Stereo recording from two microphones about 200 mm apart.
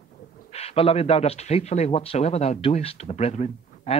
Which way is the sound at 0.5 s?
30° left (ahead or behind).